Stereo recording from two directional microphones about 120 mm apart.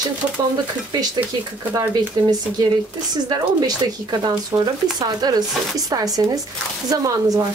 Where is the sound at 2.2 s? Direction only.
35° right (ahead or behind).